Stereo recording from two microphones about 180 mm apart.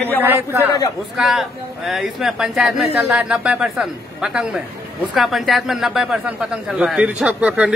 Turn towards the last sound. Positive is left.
turn(degrees=-5)  # may be behind; listen again after turning